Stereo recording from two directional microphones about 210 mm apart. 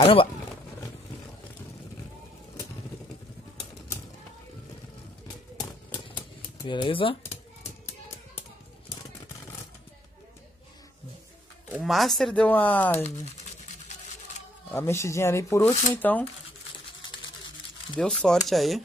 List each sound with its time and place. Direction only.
0.0 s speech: 25° left (ahead or behind)
6.6 s speech: 25° left (ahead or behind)
11.7 s speech: centre (ahead or behind)
14.7 s speech: 10° left (ahead or behind)
17.9 s speech: centre (ahead or behind)